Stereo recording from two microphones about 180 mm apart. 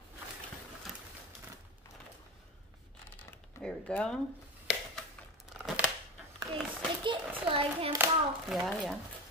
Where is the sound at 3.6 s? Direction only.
5° left (ahead or behind).